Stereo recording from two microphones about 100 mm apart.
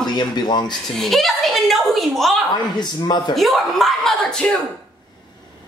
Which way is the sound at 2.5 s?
45° left (ahead or behind).